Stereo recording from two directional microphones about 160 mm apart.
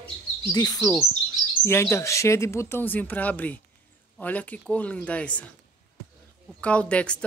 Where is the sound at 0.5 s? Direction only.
25° left (ahead or behind); by 5.5 s 10° left (ahead or behind).